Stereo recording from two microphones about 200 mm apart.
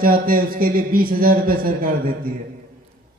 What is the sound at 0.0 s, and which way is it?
A man's voice, 45° right (ahead or behind).